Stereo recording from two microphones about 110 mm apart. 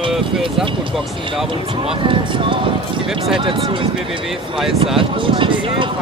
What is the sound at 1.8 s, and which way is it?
Speech, 55° right (ahead or behind).